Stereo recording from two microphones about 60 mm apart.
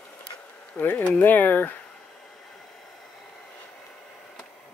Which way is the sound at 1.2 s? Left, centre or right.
Left.